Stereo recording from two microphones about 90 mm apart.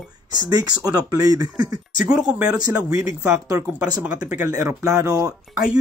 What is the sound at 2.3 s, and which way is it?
Speech, 15° right (ahead or behind).